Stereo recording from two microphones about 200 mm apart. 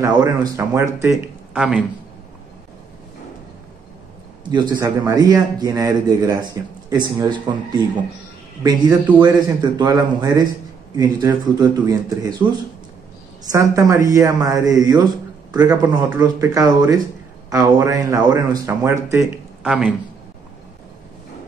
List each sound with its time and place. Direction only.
0.0 s a woman's voice: 20° right (ahead or behind)
1.5 s speech: 5° right (ahead or behind)
4.5 s a man's voice: 20° right (ahead or behind)
9.2 s a man's voice: 20° right (ahead or behind)
13.5 s a woman's voice: 15° right (ahead or behind)